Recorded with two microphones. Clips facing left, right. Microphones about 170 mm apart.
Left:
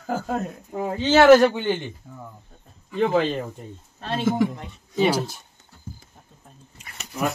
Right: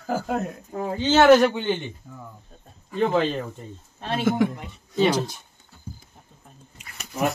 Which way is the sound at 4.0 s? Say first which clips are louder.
Even; 15° right (ahead or behind).